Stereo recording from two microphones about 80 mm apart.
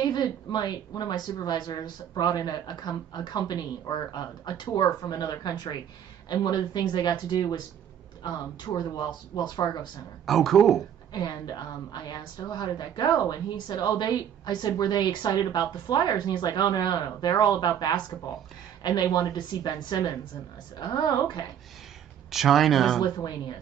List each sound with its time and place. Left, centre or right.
0.0 s a woman's voice: left
10.2 s speech: centre
11.1 s a woman's voice: left
19.3 s a woman's voice: left
22.3 s speech: centre